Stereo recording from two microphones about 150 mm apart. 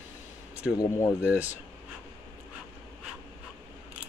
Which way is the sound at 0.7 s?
20° left (ahead or behind).